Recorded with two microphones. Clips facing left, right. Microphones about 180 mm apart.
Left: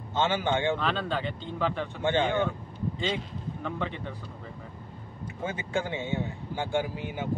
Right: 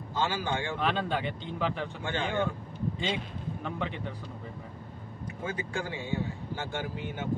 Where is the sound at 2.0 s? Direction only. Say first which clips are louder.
Left 8 dB; 20° left (ahead or behind).